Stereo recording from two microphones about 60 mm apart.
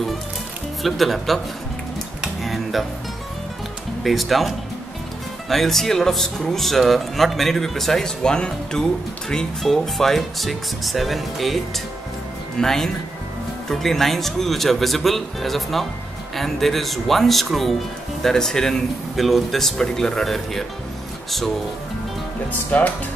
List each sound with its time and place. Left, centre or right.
0.8 s speech: centre
2.2 s a sound: centre
4.0 s speech: centre
22.5 s speech: left